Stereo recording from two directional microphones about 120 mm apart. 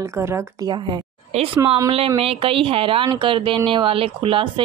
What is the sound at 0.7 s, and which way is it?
Speech, 40° right (ahead or behind).